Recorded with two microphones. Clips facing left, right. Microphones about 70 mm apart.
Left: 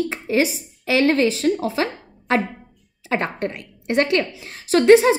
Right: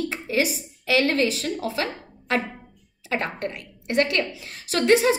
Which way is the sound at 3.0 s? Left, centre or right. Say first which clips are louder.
Left 4 dB; left.